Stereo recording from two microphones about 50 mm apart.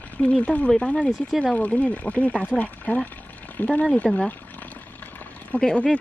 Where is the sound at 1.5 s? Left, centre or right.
Left.